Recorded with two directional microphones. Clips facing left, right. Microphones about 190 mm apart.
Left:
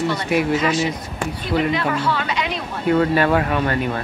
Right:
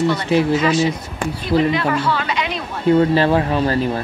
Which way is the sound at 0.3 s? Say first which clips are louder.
Right 2 dB; 30° right (ahead or behind).